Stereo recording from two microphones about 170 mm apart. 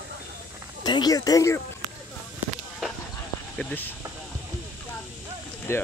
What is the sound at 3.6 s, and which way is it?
Speech, 10° left (ahead or behind).